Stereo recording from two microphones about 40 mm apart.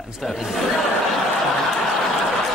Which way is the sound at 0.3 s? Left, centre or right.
Centre.